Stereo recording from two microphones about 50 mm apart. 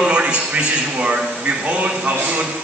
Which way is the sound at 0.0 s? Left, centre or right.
Right.